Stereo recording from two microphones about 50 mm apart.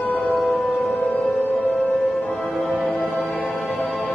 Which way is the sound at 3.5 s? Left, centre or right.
Centre.